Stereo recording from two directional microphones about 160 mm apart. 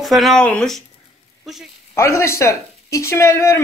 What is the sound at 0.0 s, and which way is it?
Speech, centre (ahead or behind).